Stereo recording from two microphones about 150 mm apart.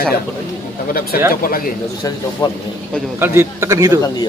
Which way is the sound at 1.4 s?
75° left (ahead or behind).